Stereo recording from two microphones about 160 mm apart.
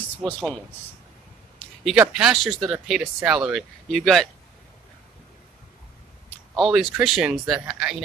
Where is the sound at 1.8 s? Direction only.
5° right (ahead or behind).